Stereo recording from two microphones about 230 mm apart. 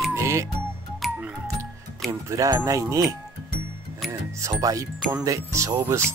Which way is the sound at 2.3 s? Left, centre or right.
Centre.